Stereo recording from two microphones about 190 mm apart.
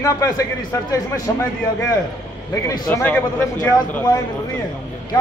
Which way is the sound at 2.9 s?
10° left (ahead or behind).